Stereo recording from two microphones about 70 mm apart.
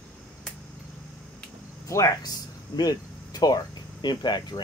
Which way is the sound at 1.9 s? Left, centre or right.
Left.